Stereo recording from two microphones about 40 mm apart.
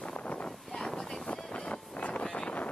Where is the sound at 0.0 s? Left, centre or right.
Left.